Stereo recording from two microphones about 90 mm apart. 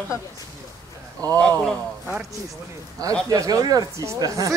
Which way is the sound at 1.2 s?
40° right (ahead or behind).